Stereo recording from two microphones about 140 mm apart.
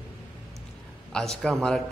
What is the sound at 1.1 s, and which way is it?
Speech, 5° left (ahead or behind).